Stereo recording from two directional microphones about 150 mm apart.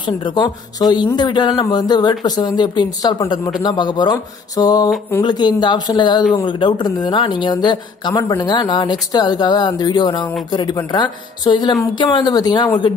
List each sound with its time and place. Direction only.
0.0 s speech: 30° left (ahead or behind)